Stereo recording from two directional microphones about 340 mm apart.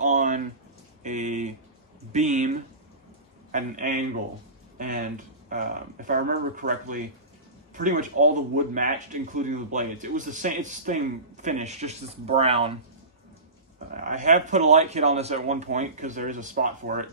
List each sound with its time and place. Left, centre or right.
0.0 s a sound: right
2.1 s speech: right
13.8 s speech: right